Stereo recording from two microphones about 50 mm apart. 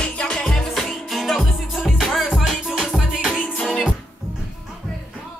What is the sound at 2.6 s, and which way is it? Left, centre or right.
Music, centre.